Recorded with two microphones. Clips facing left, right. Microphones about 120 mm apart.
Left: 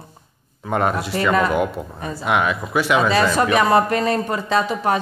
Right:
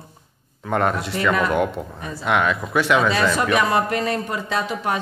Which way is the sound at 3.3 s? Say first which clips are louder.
Left 3 dB; 35° left (ahead or behind).